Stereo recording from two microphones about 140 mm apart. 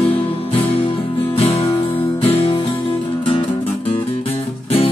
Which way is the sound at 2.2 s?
45° left (ahead or behind).